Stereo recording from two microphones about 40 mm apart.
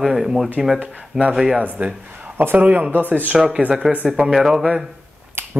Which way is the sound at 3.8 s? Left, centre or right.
Centre.